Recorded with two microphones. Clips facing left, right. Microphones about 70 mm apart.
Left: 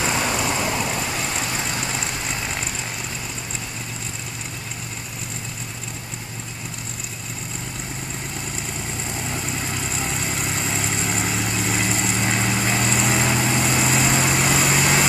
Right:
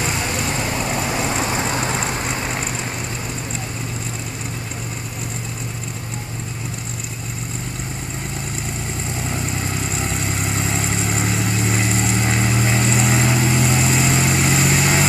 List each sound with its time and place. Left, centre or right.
1.6 s vehicle: right
9.8 s vehicle: centre